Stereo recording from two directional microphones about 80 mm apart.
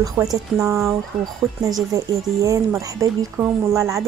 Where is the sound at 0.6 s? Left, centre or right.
Right.